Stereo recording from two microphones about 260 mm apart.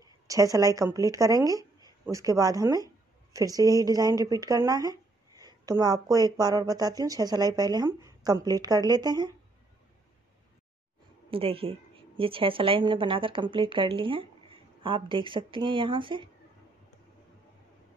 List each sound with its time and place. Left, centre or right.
0.0 s speech: centre
11.2 s a woman's voice: right